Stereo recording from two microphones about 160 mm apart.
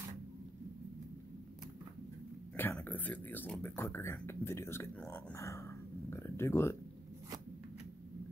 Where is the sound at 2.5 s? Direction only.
10° left (ahead or behind).